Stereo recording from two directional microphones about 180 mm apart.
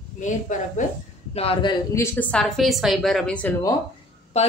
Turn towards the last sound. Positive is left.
turn(degrees=35)  # may be behind; listen again after turning